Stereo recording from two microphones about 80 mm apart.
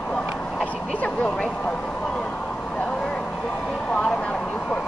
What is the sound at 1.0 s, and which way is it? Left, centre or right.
Vehicle, centre.